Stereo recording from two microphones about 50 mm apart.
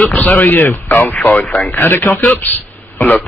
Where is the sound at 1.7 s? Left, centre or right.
Left.